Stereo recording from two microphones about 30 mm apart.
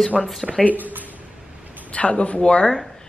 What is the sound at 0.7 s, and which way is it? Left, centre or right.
Speech, right.